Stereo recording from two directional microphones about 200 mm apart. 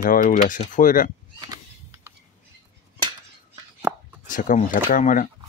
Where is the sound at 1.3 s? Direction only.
15° right (ahead or behind).